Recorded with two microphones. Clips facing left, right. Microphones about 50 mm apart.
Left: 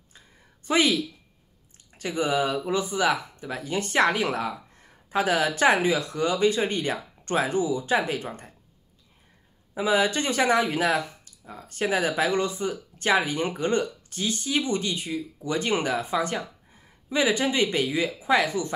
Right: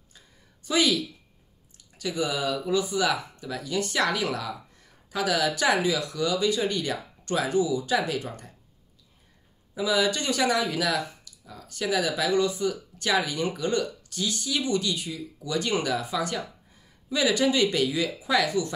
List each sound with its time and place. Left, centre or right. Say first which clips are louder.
0.7 s speech: left 2 dB; left
9.8 s speech: left 2 dB; left